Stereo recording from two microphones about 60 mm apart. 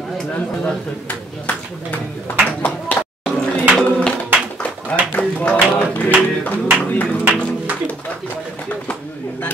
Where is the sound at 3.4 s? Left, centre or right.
Left.